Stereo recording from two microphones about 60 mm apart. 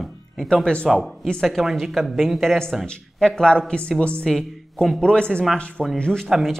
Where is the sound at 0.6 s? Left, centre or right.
Centre.